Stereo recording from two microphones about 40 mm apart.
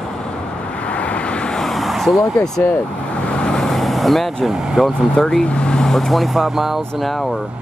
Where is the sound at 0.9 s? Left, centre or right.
Left.